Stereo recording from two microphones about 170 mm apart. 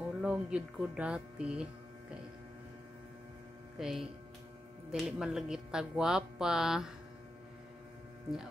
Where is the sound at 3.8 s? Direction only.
5° right (ahead or behind).